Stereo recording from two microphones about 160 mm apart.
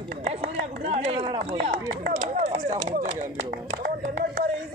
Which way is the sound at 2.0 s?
45° right (ahead or behind).